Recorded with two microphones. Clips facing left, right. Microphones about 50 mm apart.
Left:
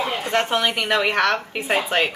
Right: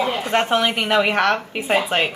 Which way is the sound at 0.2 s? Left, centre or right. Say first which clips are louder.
Right 1 dB; centre.